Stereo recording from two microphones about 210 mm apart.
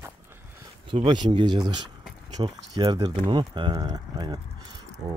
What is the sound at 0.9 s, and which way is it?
Speech, 25° right (ahead or behind).